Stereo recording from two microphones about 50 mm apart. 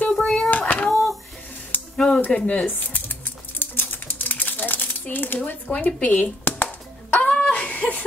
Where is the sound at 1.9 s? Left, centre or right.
Centre.